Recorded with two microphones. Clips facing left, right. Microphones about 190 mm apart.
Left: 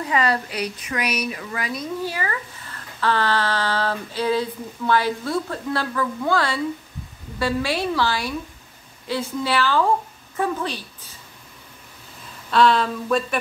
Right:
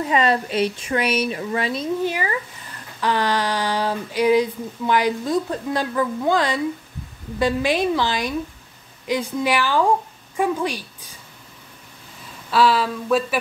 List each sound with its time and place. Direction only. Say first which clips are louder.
0.0 s a woman's voice: right 3 dB; 20° right (ahead or behind)
12.4 s speech: even; 5° right (ahead or behind)